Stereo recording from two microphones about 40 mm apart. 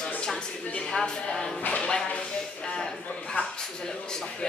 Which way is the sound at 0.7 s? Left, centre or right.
Centre.